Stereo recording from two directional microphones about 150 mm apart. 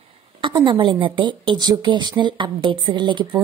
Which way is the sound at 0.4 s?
30° right (ahead or behind).